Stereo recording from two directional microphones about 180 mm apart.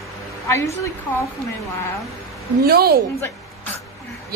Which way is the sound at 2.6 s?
60° right (ahead or behind).